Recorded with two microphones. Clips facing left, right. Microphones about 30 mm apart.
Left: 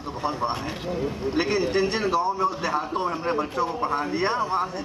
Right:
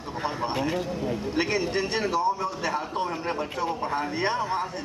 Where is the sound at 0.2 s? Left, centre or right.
Centre.